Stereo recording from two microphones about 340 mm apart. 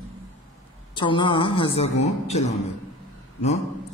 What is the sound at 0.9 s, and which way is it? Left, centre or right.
Speech, centre.